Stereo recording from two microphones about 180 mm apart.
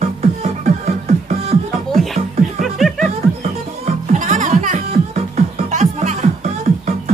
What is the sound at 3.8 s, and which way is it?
Music, 40° right (ahead or behind).